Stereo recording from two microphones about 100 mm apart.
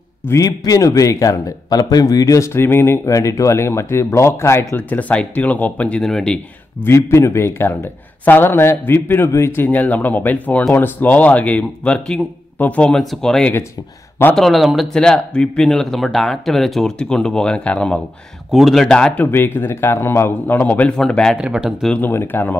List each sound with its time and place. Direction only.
0.3 s a man's voice: 35° left (ahead or behind); by 6.4 s 5° left (ahead or behind)
7.0 s a man's voice: 25° left (ahead or behind); by 18.0 s 10° left (ahead or behind)
18.5 s speech: centre (ahead or behind)
19.2 s a man's voice: 20° left (ahead or behind); by 21.4 s 5° left (ahead or behind)
21.4 s speech: 10° right (ahead or behind)
21.8 s a man's voice: 10° left (ahead or behind)